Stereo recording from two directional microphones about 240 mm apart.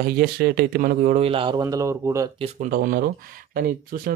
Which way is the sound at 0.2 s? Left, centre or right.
Right.